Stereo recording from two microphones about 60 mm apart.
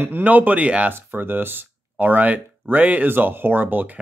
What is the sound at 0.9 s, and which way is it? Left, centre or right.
Speech, right.